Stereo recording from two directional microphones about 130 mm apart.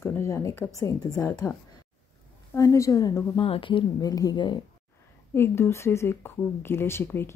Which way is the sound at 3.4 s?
40° left (ahead or behind).